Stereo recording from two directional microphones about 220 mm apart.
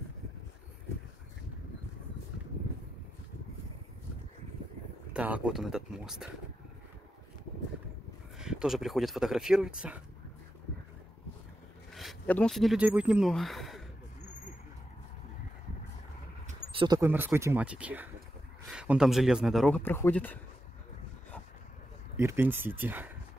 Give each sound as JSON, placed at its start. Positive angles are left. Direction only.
{"t": 5.1, "sound": "speech", "side_deg": -5}
{"t": 8.4, "sound": "speech", "side_deg": -5}
{"t": 11.9, "sound": "speech", "side_deg": 0}
{"t": 16.4, "sound": "a sound", "side_deg": -20}
{"t": 17.1, "sound": "speech", "side_deg": -10}
{"t": 22.1, "sound": "speech", "side_deg": -10}